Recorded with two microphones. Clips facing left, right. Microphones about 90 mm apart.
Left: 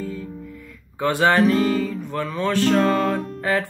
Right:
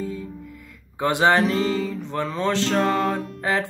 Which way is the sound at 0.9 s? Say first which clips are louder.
Left 1 dB; 20° right (ahead or behind).